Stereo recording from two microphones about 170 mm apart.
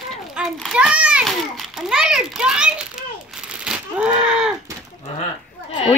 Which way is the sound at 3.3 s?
5° right (ahead or behind).